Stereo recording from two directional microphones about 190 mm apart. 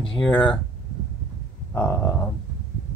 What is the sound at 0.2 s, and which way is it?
Speech, 10° left (ahead or behind).